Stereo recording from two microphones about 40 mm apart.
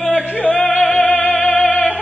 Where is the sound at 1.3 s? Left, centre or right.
Left.